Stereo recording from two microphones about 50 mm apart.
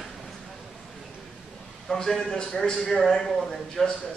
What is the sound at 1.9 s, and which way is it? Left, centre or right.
A man's voice, centre.